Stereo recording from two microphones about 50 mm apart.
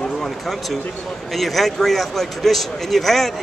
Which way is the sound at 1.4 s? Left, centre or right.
Centre.